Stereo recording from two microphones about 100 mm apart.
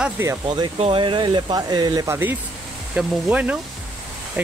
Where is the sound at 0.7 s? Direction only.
70° right (ahead or behind); by 2.0 s 40° right (ahead or behind).